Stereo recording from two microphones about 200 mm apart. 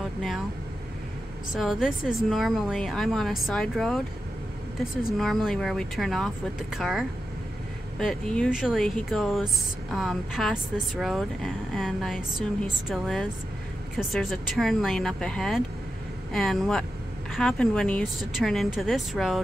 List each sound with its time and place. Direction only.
0.0 s vehicle: centre (ahead or behind)
1.6 s speech: centre (ahead or behind)
5.1 s speech: centre (ahead or behind)